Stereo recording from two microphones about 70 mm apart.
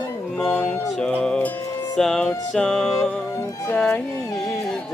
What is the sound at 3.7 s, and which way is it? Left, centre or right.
Music, centre.